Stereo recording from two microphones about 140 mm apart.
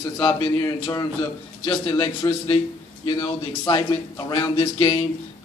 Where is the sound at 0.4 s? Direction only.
20° left (ahead or behind).